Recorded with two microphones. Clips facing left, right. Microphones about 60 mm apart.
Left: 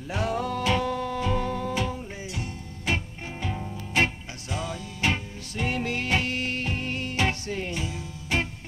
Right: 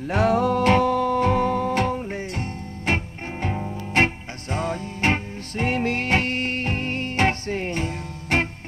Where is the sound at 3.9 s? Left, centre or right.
Right.